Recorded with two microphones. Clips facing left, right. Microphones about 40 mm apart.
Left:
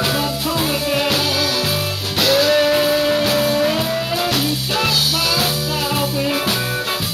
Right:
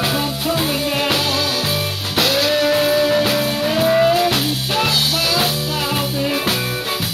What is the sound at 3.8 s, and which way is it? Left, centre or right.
Music, right.